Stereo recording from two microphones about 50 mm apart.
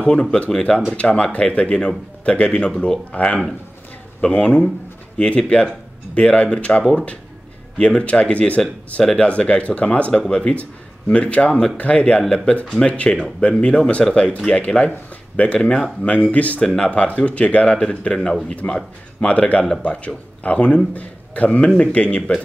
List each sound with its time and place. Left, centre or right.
0.0 s speech: centre
9.0 s speech: centre
9.3 s speech: left
18.1 s speech: centre
18.6 s a man's voice: left